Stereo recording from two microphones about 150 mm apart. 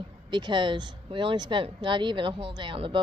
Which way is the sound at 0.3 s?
30° right (ahead or behind).